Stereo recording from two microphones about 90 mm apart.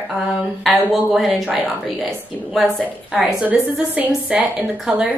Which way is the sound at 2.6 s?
10° left (ahead or behind).